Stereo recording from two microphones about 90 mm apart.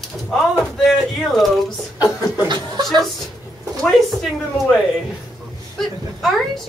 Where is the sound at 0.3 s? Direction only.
5° left (ahead or behind).